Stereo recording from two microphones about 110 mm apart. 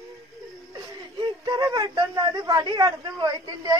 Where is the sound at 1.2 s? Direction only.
35° right (ahead or behind).